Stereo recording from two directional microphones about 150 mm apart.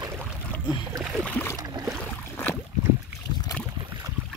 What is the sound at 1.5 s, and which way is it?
Boat, 25° right (ahead or behind).